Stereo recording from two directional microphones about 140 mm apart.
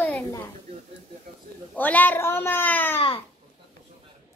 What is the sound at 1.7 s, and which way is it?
Speech, 10° left (ahead or behind).